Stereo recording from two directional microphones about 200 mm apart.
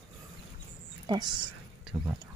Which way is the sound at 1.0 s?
20° right (ahead or behind).